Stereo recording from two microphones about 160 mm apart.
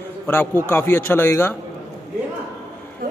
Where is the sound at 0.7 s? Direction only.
15° left (ahead or behind).